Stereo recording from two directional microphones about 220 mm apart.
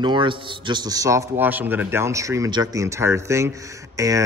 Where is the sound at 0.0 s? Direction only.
20° right (ahead or behind).